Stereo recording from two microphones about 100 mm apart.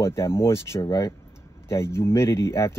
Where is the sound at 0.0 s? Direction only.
25° left (ahead or behind).